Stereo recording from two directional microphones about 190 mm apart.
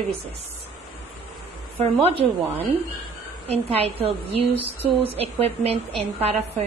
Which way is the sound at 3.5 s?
30° right (ahead or behind).